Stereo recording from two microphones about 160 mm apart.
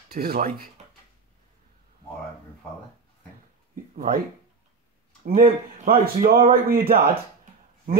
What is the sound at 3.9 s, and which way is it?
Speech, 65° right (ahead or behind).